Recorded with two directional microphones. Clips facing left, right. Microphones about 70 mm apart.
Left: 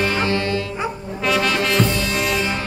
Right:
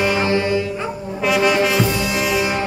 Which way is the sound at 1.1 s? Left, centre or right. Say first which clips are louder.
Right 4 dB; centre.